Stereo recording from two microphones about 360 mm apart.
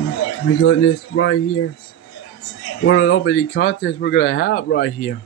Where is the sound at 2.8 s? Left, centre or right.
Left.